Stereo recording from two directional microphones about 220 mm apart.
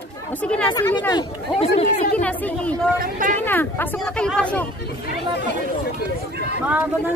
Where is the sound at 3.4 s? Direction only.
10° left (ahead or behind).